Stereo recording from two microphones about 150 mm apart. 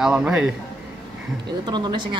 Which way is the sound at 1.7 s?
30° right (ahead or behind).